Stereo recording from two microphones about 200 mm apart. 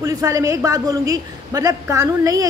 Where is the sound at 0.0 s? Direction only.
15° right (ahead or behind).